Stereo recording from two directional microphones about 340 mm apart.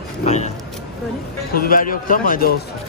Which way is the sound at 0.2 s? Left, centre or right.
Centre.